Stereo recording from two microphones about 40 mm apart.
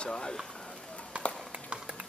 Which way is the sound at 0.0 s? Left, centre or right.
Left.